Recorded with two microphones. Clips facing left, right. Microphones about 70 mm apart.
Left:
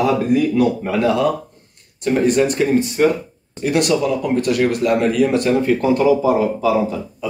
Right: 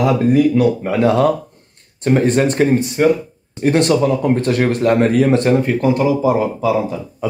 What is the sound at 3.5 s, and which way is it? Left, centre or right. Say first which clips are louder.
A man's voice: right 3 dB; right.